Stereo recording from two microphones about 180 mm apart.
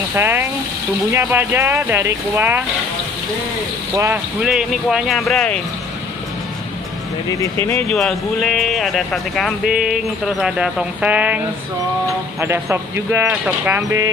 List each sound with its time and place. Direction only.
0.1 s speech: 10° right (ahead or behind)
3.9 s speech: 15° right (ahead or behind)
4.4 s speech: 5° right (ahead or behind)
7.2 s speech: 15° left (ahead or behind)
7.9 s speech: centre (ahead or behind); by 14.1 s 15° right (ahead or behind)